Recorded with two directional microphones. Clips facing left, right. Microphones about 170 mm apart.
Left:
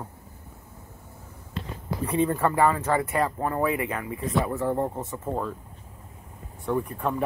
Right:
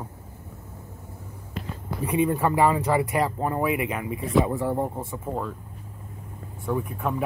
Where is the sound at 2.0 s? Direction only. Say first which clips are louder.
Right 1 dB; 10° right (ahead or behind).